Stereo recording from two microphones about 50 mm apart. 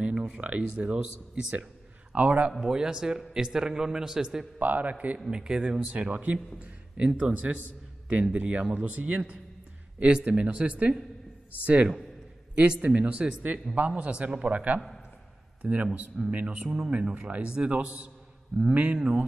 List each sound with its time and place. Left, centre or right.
0.0 s speech: centre
2.6 s a man's voice: centre
4.6 s a man's voice: right
5.3 s a man's voice: centre
6.1 s a man's voice: right
16.6 s a man's voice: centre
16.9 s a man's voice: right
18.9 s a man's voice: centre